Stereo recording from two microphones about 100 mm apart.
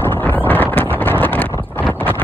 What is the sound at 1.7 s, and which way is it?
Clip-clop, 20° left (ahead or behind).